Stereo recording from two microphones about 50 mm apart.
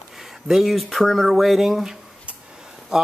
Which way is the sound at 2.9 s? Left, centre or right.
Centre.